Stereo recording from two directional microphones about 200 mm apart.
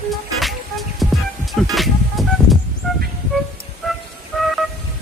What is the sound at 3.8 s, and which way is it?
Music, centre (ahead or behind).